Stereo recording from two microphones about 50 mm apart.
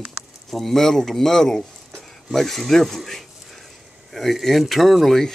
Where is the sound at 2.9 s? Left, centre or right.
Centre.